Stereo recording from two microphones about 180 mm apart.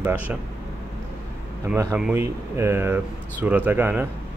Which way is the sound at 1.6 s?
15° right (ahead or behind).